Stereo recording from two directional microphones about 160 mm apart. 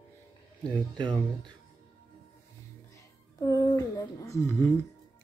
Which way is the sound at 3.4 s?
25° left (ahead or behind).